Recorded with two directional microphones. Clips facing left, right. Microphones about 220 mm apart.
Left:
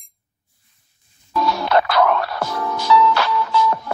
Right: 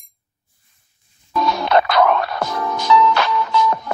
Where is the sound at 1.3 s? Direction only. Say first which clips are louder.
Right 1 dB; 20° right (ahead or behind).